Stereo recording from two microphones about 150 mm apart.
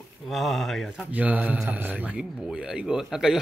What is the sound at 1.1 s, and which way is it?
A man's voice, 10° right (ahead or behind).